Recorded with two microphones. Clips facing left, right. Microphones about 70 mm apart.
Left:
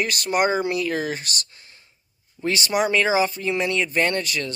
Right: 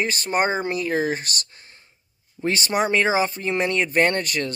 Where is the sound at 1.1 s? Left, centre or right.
Right.